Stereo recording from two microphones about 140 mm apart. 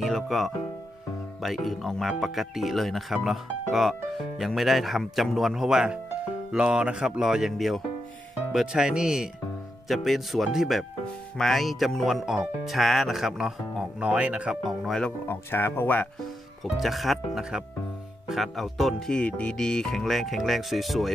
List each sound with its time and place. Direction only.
0.0 s speech: centre (ahead or behind)
15.2 s speech: 15° left (ahead or behind)
16.6 s speech: centre (ahead or behind)